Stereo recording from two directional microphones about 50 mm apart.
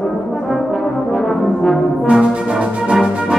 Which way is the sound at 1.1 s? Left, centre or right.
Centre.